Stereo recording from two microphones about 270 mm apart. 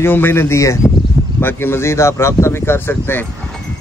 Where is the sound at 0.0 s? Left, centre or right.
Centre.